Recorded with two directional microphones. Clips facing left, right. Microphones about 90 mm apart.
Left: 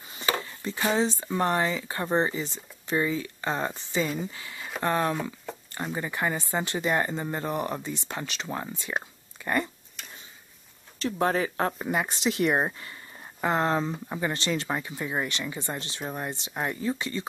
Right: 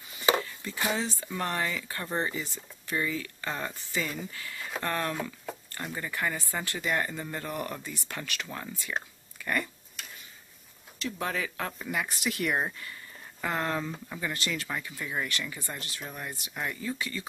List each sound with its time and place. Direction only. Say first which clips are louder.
0.4 s a sound: left 2 dB; 25° left (ahead or behind)
0.9 s speech: left 7 dB; 25° left (ahead or behind)
5.5 s a sound: left 1 dB; 5° right (ahead or behind)
5.9 s speech: left 3 dB; 20° left (ahead or behind)
10.0 s tick-tock: even; centre (ahead or behind)
11.0 s speech: left 7 dB; 40° left (ahead or behind)